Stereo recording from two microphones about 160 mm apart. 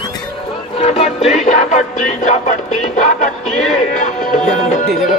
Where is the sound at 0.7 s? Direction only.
40° left (ahead or behind).